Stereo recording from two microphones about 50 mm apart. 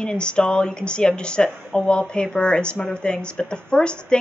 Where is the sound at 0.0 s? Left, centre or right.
Centre.